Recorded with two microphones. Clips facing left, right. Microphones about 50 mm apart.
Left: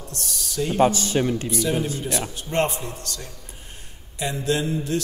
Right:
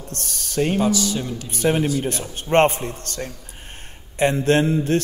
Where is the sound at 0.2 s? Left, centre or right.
Right.